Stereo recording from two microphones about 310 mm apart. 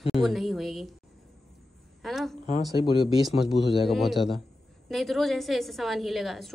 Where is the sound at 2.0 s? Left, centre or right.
Centre.